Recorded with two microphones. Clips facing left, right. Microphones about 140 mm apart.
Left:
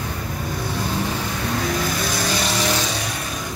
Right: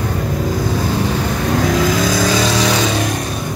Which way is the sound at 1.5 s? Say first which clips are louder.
Right 9 dB; 80° right.